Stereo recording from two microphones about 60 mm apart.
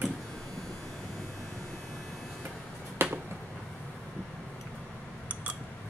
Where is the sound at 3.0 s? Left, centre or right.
Right.